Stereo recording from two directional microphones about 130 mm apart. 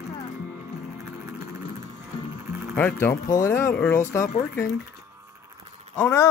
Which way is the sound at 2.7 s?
15° left (ahead or behind).